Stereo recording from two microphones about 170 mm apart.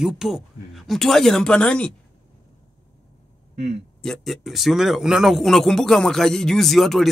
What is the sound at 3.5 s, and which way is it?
Speech, 40° right (ahead or behind).